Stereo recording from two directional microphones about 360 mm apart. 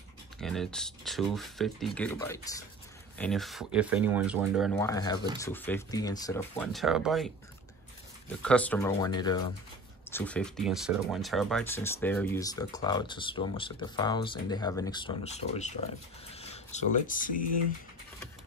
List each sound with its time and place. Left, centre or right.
0.4 s speech: centre
8.4 s speech: centre; by 17.3 s left